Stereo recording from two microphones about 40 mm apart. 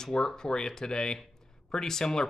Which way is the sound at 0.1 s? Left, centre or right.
Centre.